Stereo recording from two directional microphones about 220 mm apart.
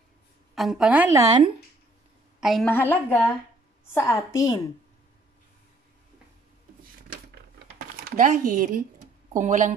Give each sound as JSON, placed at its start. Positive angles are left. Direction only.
{"t": 0.6, "sound": "a woman's voice", "side_deg": 0}
{"t": 2.4, "sound": "a woman's voice", "side_deg": 5}
{"t": 7.5, "sound": "a sound", "side_deg": -40}
{"t": 9.3, "sound": "speech", "side_deg": -35}